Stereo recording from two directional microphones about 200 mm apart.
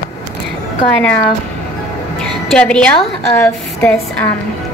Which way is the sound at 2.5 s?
5° left (ahead or behind).